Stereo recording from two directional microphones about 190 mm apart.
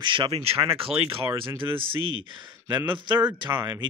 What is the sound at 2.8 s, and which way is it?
Speech, 25° right (ahead or behind).